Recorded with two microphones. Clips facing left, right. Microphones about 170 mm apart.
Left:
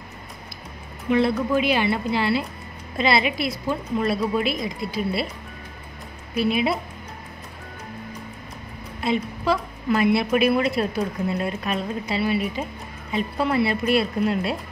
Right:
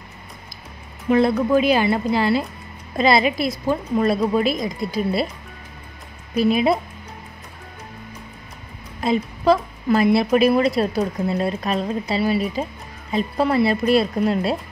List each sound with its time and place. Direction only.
1.1 s a woman's voice: 40° right (ahead or behind)
6.3 s a woman's voice: 40° right (ahead or behind)
9.0 s a woman's voice: 40° right (ahead or behind)